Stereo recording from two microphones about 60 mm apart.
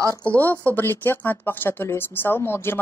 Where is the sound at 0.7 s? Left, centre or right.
Left.